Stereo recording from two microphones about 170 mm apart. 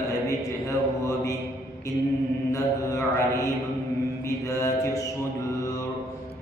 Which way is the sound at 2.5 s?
20° left (ahead or behind).